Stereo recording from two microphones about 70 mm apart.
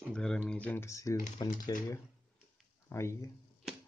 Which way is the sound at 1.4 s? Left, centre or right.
Left.